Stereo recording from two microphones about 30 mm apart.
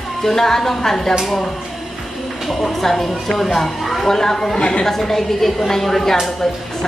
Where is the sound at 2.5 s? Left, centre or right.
Centre.